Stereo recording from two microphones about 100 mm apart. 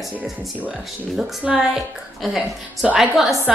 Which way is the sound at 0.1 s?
15° right (ahead or behind).